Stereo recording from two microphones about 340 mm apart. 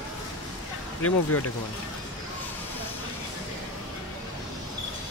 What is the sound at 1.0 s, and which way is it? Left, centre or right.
Speech, left.